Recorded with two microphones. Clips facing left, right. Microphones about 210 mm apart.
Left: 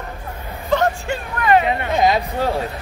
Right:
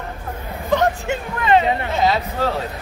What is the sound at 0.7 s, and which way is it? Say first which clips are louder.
Music: even; 20° right (ahead or behind).